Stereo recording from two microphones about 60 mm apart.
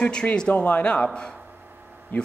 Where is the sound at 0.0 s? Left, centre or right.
Centre.